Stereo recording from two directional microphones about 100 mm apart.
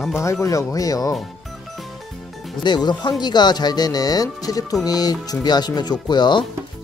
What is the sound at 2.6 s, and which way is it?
Speech, 45° left (ahead or behind).